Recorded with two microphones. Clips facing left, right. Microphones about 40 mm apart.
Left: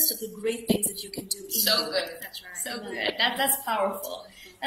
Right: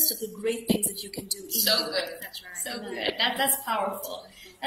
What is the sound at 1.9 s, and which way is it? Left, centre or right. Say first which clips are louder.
A man's voice: left 1 dB; centre.